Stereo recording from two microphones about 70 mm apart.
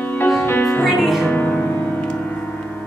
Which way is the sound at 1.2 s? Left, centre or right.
Left.